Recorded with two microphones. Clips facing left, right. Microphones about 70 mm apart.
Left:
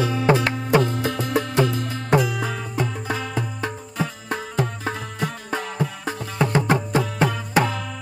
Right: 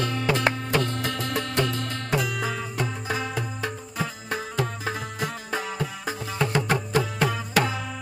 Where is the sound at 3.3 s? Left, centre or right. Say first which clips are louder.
Left 3 dB; centre.